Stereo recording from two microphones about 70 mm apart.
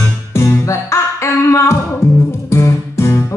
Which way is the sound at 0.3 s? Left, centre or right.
Left.